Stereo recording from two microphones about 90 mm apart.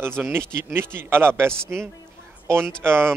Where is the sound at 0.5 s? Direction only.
25° right (ahead or behind).